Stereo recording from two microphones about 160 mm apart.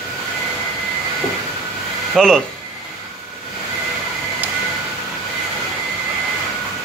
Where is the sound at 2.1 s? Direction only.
5° left (ahead or behind).